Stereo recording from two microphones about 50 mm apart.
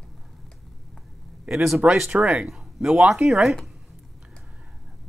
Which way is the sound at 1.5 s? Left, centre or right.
Centre.